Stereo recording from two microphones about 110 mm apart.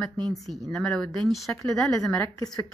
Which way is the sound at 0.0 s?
5° left (ahead or behind).